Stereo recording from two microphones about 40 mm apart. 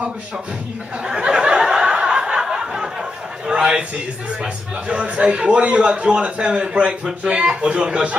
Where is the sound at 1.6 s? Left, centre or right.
Centre.